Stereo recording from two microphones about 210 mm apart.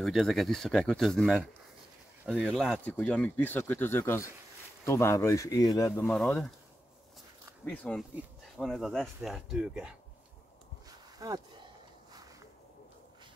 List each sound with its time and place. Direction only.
0.0 s speech: centre (ahead or behind)
7.6 s speech: 5° left (ahead or behind)
11.1 s speech: 15° right (ahead or behind)